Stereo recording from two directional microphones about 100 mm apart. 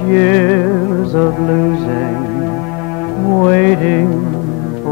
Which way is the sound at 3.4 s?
10° left (ahead or behind).